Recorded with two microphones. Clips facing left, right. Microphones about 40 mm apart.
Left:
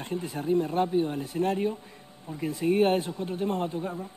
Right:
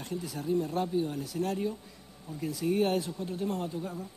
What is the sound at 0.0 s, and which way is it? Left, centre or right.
Speech, left.